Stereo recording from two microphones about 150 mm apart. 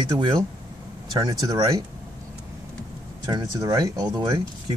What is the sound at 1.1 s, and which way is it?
Speech, 25° right (ahead or behind).